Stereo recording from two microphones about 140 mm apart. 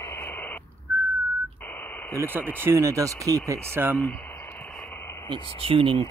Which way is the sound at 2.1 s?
15° right (ahead or behind).